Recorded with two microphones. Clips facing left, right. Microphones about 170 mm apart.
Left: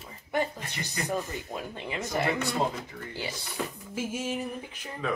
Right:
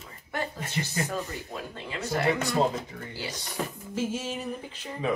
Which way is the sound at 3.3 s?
40° right (ahead or behind).